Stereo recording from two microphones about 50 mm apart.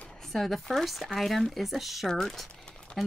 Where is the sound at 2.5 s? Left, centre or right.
Centre.